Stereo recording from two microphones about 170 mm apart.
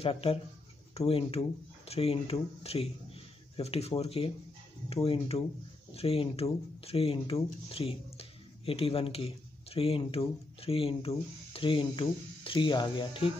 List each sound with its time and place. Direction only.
0.0 s speech: 35° left (ahead or behind)